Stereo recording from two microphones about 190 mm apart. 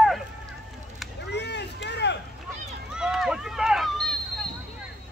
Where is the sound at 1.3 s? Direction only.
65° left (ahead or behind).